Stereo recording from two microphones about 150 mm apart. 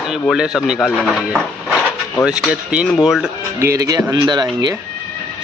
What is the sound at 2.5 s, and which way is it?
Speech, 5° right (ahead or behind).